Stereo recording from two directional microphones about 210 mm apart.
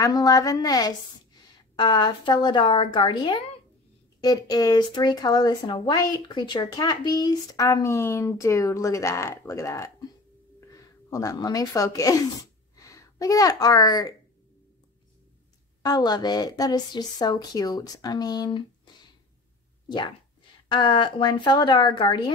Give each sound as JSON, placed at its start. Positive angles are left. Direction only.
{"t": 0.0, "sound": "a woman's voice", "side_deg": 15}
{"t": 15.8, "sound": "a woman's voice", "side_deg": 20}
{"t": 20.6, "sound": "a woman's voice", "side_deg": 20}